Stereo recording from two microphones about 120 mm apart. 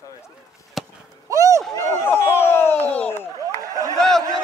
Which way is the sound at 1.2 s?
25° right (ahead or behind).